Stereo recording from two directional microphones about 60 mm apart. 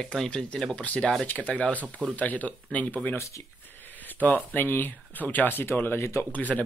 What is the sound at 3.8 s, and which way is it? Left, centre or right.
Speech, left.